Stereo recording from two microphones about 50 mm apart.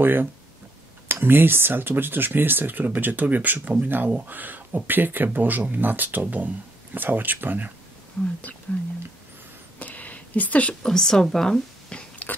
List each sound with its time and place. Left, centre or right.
0.0 s speech: right
8.2 s speech: centre
9.8 s a sound: left
10.8 s speech: centre